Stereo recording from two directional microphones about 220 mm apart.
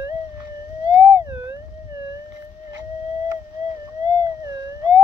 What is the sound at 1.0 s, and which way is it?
Theremin, 10° right (ahead or behind).